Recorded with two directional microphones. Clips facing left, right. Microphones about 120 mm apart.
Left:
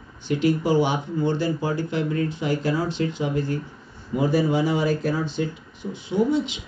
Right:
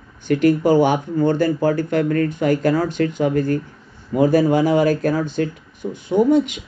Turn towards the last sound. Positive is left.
turn(degrees=-50)  # may be behind; listen again after turning